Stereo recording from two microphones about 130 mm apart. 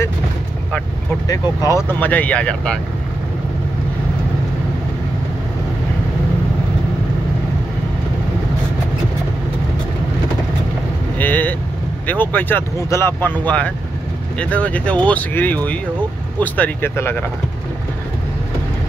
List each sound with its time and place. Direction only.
1.2 s speech: 25° left (ahead or behind)
1.9 s speech: 15° left (ahead or behind)
11.1 s speech: 15° left (ahead or behind)